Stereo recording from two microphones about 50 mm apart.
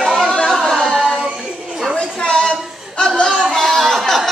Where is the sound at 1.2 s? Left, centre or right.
Centre.